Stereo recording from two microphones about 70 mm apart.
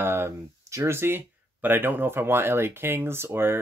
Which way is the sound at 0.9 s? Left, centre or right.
Right.